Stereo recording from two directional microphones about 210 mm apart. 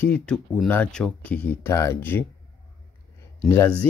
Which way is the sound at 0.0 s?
5° left (ahead or behind).